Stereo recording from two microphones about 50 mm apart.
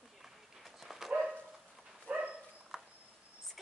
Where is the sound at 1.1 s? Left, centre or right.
Right.